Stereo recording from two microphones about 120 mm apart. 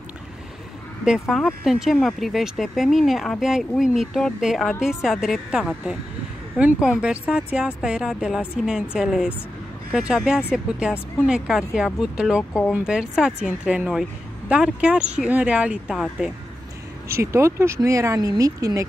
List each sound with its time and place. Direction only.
1.0 s speech: 5° right (ahead or behind)
17.1 s speech: 25° right (ahead or behind)